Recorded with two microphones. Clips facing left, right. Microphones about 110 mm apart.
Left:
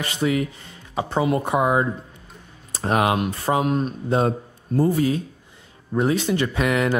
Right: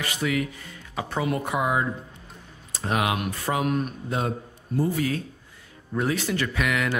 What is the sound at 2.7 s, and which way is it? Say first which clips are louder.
Speech: left 5 dB; 40° left (ahead or behind).